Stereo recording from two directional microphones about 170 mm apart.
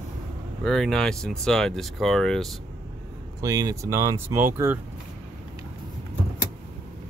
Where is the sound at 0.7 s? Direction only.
Centre (ahead or behind).